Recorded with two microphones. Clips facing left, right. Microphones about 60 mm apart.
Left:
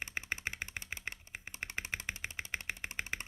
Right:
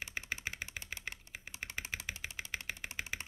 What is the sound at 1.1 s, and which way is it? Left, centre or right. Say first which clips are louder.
Computer keyboard: left 1 dB; centre.